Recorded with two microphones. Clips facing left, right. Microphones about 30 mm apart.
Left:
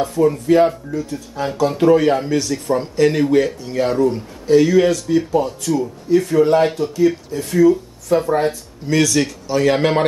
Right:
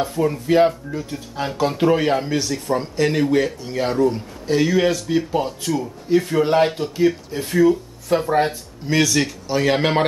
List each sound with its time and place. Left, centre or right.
0.0 s speech: centre